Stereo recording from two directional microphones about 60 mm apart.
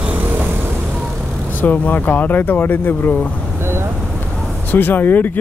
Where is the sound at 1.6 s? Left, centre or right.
Left.